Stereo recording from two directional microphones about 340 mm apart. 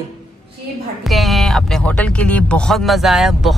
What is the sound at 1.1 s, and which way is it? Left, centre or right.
A woman's voice, centre.